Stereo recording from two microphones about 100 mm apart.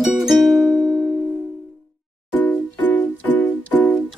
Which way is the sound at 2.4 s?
20° left (ahead or behind).